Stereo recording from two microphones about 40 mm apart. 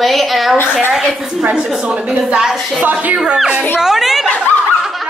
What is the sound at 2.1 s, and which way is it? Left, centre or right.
Speech, right.